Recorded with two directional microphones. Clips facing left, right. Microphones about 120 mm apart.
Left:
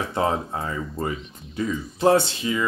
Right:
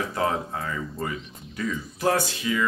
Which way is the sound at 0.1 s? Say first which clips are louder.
Left 2 dB; 25° left (ahead or behind).